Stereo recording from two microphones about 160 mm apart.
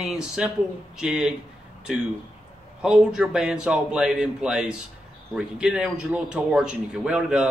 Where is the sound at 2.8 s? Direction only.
5° right (ahead or behind).